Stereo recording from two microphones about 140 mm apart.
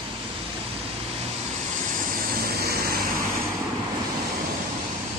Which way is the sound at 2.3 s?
90° right.